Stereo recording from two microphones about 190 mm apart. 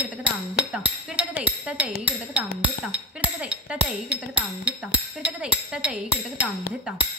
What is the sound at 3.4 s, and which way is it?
Speech, 5° right (ahead or behind).